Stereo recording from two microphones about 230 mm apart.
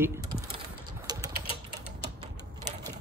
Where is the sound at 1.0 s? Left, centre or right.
Centre.